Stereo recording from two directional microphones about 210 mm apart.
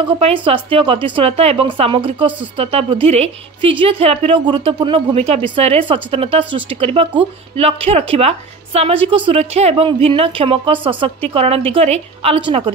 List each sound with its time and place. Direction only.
0.2 s speech: 25° right (ahead or behind)